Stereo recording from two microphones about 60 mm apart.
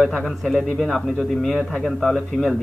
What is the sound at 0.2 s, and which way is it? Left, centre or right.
Speech, centre.